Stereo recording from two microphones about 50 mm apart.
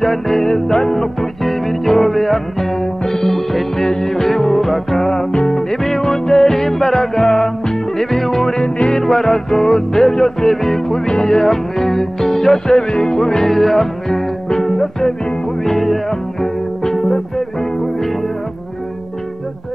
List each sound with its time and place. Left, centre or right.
0.0 s music: centre